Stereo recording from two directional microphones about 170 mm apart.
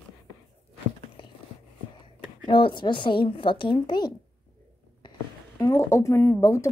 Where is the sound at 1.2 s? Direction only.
30° left (ahead or behind).